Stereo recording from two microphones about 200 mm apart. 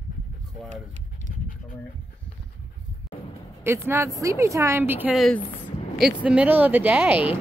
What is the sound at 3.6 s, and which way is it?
Speech, 10° right (ahead or behind).